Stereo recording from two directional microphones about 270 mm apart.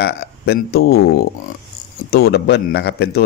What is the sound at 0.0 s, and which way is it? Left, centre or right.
Speech, left.